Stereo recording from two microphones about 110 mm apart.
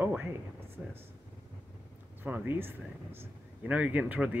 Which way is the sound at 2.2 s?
20° right (ahead or behind).